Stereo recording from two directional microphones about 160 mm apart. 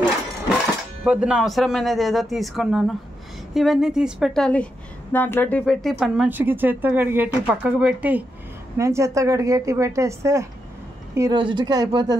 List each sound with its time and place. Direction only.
1.0 s a woman's voice: 5° right (ahead or behind); by 12.2 s 25° right (ahead or behind)